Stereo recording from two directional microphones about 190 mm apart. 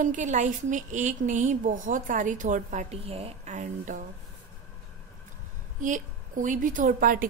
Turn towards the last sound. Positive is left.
turn(degrees=-45)  # may be behind; listen again after turning